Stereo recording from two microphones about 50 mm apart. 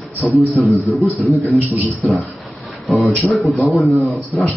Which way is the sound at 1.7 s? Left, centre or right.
Left.